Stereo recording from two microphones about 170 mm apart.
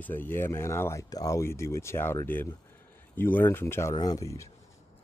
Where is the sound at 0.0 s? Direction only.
10° left (ahead or behind).